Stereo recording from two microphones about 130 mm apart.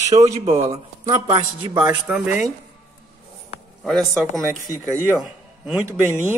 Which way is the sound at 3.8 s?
Centre (ahead or behind).